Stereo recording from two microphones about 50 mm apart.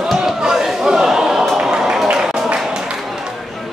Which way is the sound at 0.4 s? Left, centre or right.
Centre.